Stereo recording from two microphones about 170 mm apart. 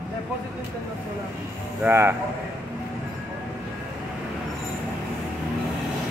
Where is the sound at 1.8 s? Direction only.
15° right (ahead or behind).